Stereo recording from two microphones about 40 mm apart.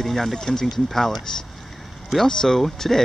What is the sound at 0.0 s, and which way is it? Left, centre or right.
Speech, centre.